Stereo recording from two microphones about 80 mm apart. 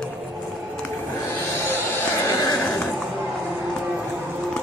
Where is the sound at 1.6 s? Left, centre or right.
Left.